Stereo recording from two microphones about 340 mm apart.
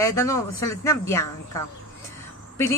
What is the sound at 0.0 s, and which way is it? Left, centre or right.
A woman's voice, centre.